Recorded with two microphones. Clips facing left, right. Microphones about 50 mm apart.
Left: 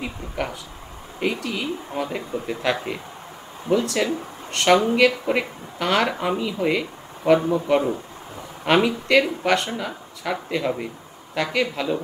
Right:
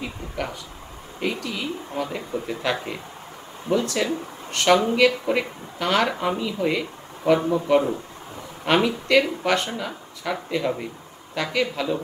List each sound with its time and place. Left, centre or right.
0.4 s speech: centre